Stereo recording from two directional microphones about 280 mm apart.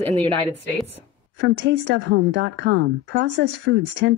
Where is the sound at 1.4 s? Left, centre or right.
Right.